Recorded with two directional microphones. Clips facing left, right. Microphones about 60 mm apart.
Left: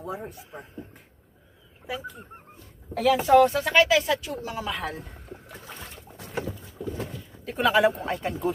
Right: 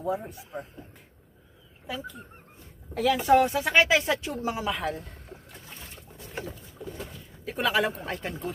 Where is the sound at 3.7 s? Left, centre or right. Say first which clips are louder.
Left 1 dB; right.